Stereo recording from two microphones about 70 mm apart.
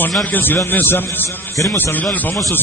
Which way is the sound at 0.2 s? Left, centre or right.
Left.